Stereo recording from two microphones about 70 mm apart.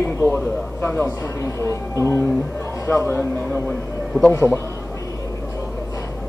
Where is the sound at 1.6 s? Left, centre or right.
Left.